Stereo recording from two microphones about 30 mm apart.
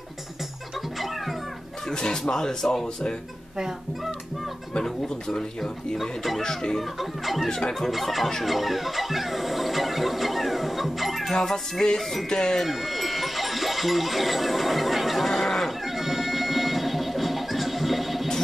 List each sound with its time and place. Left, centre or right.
1.9 s speech: left
2.3 s speech: centre
5.9 s speech: centre
6.4 s speech: left
6.8 s speech: centre
7.4 s speech: centre
7.9 s speech: centre
11.3 s speech: centre
12.5 s sheep: centre
15.3 s neigh: centre
15.9 s music: centre